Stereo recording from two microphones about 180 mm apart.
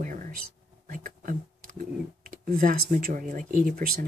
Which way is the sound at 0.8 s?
50° right (ahead or behind).